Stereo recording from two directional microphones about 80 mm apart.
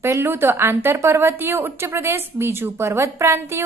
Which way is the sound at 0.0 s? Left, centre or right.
Right.